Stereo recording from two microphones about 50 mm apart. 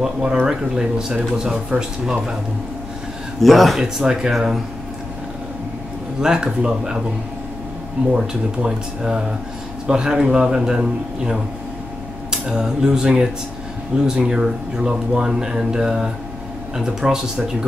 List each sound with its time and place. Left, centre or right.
0.2 s speech: centre
3.4 s speech: centre
3.8 s speech: centre
6.2 s speech: centre
8.1 s speech: centre